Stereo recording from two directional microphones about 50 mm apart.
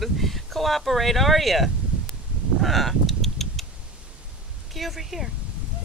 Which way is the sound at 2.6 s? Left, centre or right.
Centre.